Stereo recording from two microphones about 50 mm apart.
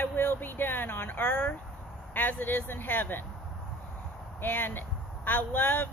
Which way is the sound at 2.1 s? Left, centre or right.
Left.